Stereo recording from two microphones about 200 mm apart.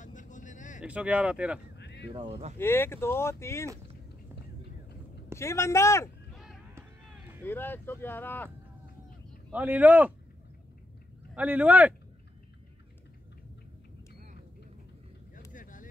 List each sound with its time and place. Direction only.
0.0 s vehicle: 40° left (ahead or behind)
0.8 s speech: 5° right (ahead or behind)
1.8 s a sound: 60° left (ahead or behind)
2.1 s speech: 30° right (ahead or behind)
2.6 s speech: 10° left (ahead or behind)
5.4 s speech: 15° left (ahead or behind)
6.3 s a sound: centre (ahead or behind)
7.4 s speech: 10° left (ahead or behind)
9.5 s speech: 10° right (ahead or behind)
11.3 s speech: 10° right (ahead or behind)
15.5 s vehicle: 40° left (ahead or behind)